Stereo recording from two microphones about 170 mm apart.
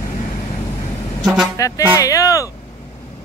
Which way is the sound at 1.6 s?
20° left (ahead or behind).